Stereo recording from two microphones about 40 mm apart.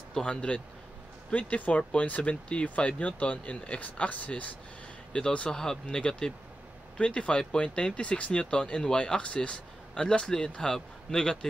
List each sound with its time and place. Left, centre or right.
0.1 s speech: left
1.3 s speech: left
5.5 s a man's voice: centre